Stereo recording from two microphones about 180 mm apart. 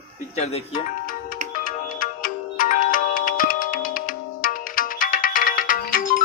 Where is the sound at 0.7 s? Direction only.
50° left (ahead or behind).